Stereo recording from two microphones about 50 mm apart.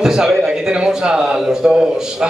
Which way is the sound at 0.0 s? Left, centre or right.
Centre.